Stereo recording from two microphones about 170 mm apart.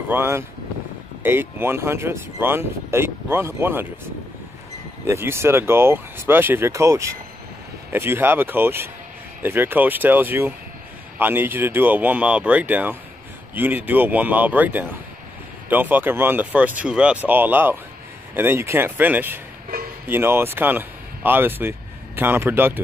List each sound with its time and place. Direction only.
0.1 s speech: 15° right (ahead or behind)
5.0 s speech: 15° right (ahead or behind)
19.7 s music: 60° right (ahead or behind)
20.1 s speech: 15° right (ahead or behind)